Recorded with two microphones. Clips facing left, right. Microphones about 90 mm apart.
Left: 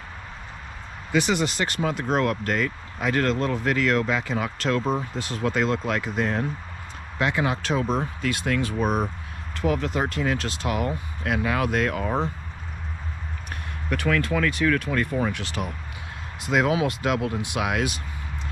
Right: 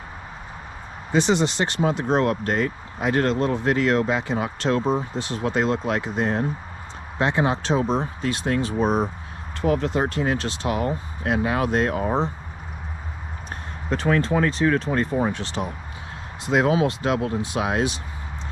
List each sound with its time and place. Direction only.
1.1 s speech: 30° right (ahead or behind)
13.8 s speech: 20° right (ahead or behind)